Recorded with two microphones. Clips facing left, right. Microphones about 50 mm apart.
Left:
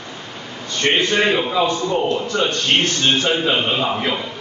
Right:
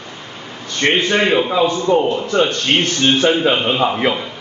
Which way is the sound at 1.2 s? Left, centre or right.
Centre.